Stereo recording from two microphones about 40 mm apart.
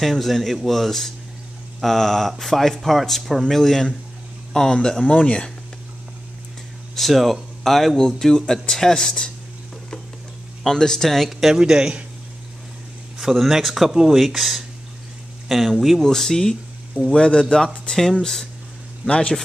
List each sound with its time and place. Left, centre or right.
0.0 s speech: centre
3.4 s speech: centre
5.0 s speech: left
7.0 s speech: centre
10.6 s speech: centre
11.2 s speech: centre
11.5 s speech: centre
13.2 s speech: centre
14.2 s speech: centre
16.0 s speech: centre
17.1 s speech: left
18.2 s speech: centre
19.0 s speech: left